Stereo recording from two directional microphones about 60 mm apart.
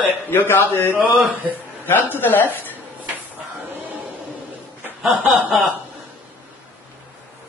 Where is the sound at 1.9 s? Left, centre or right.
Left.